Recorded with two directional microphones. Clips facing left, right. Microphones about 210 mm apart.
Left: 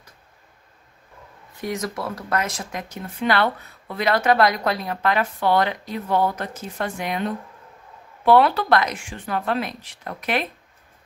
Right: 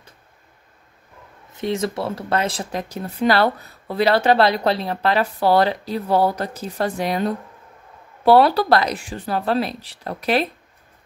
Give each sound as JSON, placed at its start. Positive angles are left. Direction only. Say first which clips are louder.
{"t": 1.6, "sound": "speech", "louder": "right 5 dB", "side_deg": -25}